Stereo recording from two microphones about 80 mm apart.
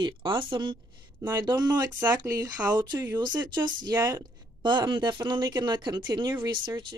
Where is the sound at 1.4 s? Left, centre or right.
Right.